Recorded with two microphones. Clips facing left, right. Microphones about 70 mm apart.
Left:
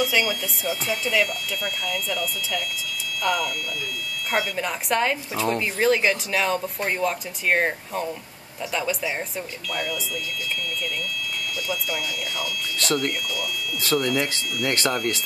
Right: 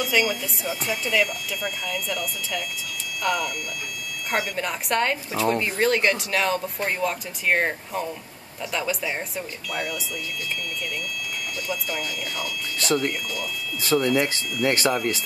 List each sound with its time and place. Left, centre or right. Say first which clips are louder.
0.0 s speech: even; centre
11.7 s speech: even; centre
14.2 s speech: right 2 dB; centre
14.9 s speech: right 1 dB; centre